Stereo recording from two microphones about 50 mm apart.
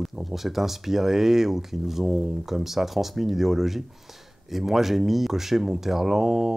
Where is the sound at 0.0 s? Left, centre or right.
Centre.